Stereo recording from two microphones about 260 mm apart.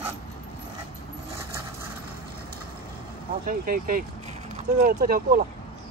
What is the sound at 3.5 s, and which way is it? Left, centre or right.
Speech, right.